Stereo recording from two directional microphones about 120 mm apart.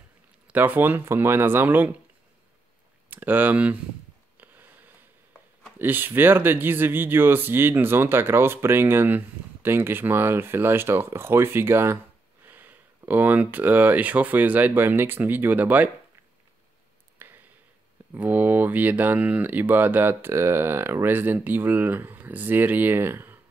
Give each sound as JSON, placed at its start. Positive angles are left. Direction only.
{"t": 0.5, "sound": "speech", "side_deg": -15}
{"t": 3.1, "sound": "speech", "side_deg": -15}
{"t": 4.4, "sound": "a sound", "side_deg": -15}
{"t": 5.8, "sound": "speech", "side_deg": -15}
{"t": 17.2, "sound": "a sound", "side_deg": -15}
{"t": 18.1, "sound": "speech", "side_deg": -15}